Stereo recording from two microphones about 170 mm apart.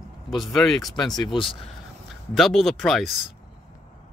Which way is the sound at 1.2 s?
30° left (ahead or behind).